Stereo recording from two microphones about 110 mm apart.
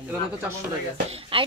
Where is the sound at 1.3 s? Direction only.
60° right (ahead or behind).